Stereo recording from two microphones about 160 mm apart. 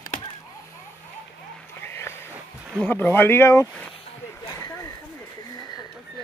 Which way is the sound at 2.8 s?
15° left (ahead or behind).